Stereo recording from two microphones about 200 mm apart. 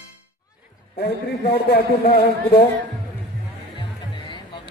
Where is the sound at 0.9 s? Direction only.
50° left (ahead or behind).